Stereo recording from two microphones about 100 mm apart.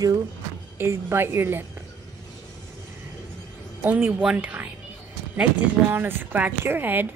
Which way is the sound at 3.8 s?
20° right (ahead or behind).